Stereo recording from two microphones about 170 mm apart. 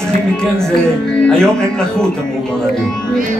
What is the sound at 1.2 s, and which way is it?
Speech, 5° left (ahead or behind).